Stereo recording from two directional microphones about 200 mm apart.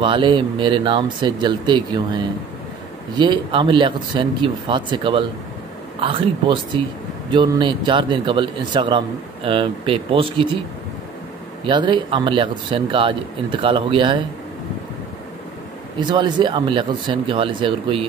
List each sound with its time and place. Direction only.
0.0 s a man's voice: 25° right (ahead or behind)
11.6 s a man's voice: 25° right (ahead or behind)
16.0 s a man's voice: 20° right (ahead or behind)